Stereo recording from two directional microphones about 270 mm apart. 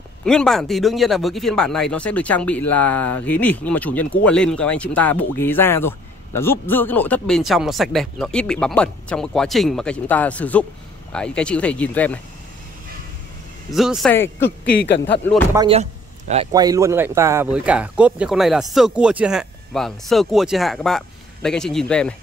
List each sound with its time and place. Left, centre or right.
0.2 s speech: centre
13.7 s speech: centre
14.4 s a man's voice: left
15.5 s a man's voice: centre
16.5 s speech: centre